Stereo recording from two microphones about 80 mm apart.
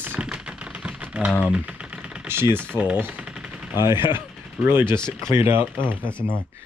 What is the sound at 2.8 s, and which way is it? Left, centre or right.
Speech, centre.